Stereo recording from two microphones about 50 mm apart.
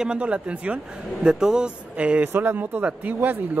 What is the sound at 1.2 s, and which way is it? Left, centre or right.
Speech, centre.